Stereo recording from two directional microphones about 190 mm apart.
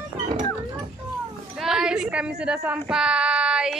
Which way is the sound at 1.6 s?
5° right (ahead or behind).